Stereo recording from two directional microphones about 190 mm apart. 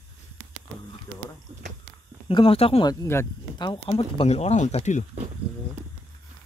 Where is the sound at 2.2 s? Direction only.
30° left (ahead or behind).